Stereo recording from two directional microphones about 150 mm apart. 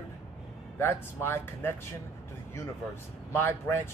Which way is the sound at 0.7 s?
15° left (ahead or behind).